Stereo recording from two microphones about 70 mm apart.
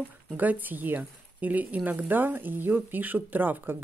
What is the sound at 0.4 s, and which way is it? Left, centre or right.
Speech, right.